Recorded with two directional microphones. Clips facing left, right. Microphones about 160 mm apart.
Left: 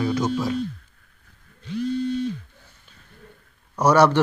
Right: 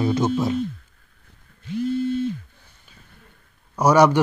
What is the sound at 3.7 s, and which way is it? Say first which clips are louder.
Speech: right 1 dB; 10° right (ahead or behind).